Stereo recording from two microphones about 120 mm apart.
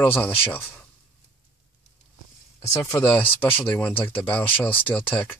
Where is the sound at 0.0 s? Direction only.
15° left (ahead or behind).